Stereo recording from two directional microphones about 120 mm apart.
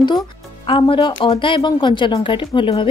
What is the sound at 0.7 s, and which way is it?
Speech, 50° left (ahead or behind).